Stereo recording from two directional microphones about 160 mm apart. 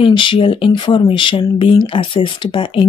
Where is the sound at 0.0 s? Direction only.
30° left (ahead or behind).